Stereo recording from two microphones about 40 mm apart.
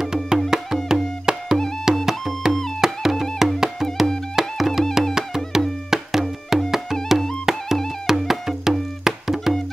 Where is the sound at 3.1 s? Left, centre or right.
Centre.